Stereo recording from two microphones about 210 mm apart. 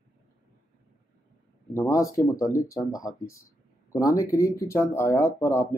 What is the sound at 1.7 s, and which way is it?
Speech, 15° left (ahead or behind).